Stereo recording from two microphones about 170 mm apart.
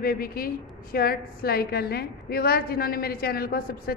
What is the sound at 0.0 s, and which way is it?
A woman's voice, 60° left (ahead or behind).